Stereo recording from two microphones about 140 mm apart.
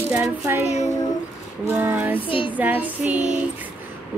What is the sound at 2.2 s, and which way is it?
Child singing, 40° left (ahead or behind).